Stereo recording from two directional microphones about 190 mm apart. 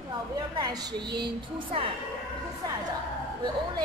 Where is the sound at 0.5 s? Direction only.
20° right (ahead or behind).